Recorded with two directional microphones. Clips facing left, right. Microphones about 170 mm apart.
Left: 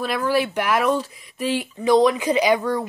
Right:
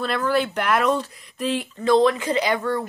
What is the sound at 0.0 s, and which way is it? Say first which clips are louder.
Speech: left 1 dB; 5° left (ahead or behind).